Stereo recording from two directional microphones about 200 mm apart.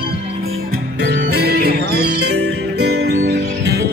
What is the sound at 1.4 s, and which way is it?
Music, 55° right (ahead or behind).